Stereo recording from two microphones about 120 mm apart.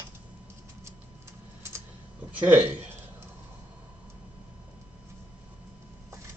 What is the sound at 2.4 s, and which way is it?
Speech, 15° right (ahead or behind).